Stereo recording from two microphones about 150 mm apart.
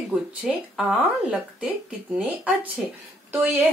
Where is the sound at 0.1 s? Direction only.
5° right (ahead or behind).